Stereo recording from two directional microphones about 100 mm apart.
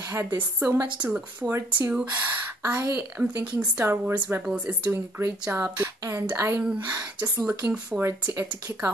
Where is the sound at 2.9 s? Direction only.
10° right (ahead or behind).